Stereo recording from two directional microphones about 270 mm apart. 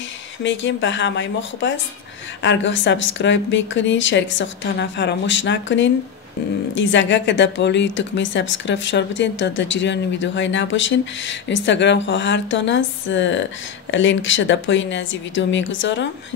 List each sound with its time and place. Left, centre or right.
0.4 s a woman's voice: left